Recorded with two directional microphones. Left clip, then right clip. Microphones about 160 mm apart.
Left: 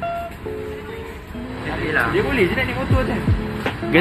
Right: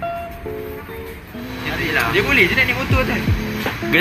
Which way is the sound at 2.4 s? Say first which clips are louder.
Right 5 dB; 25° left (ahead or behind).